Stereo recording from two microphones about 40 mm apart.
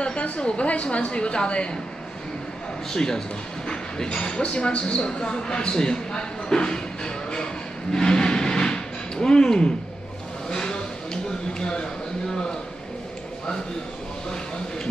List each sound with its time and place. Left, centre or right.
0.4 s speech: left
2.9 s speech: centre
7.9 s a sound: centre
10.5 s vehicle: centre
11.6 s speech: centre